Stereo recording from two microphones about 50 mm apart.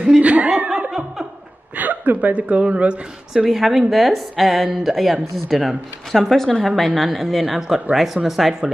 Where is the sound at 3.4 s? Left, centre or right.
Centre.